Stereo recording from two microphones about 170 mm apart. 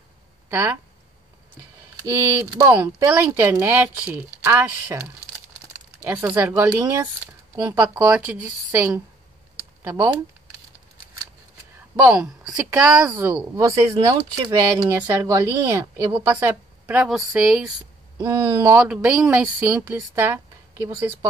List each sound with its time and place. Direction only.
0.5 s speech: 10° right (ahead or behind)
2.5 s a woman's voice: 15° right (ahead or behind)
12.1 s a woman's voice: 5° right (ahead or behind)
18.2 s speech: 20° right (ahead or behind)
18.8 s a woman's voice: 5° right (ahead or behind)